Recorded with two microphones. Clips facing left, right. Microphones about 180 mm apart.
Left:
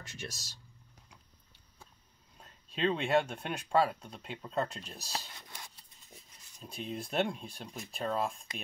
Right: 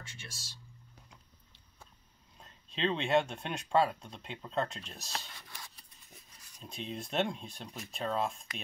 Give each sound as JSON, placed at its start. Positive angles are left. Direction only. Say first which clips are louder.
{"t": 0.2, "sound": "speech", "louder": "left 8 dB", "side_deg": 40}
{"t": 2.3, "sound": "speech", "louder": "left 1 dB", "side_deg": 0}
{"t": 6.6, "sound": "speech", "louder": "left 1 dB", "side_deg": 0}